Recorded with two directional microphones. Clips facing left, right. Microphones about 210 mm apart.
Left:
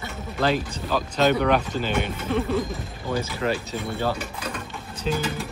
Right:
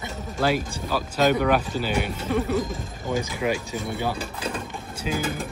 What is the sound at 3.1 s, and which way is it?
Speech, 15° right (ahead or behind).